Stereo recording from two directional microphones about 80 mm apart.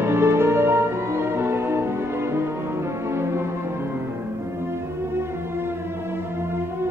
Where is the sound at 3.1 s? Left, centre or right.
Right.